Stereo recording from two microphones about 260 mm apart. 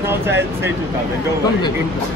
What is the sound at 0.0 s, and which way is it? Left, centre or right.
Speech, centre.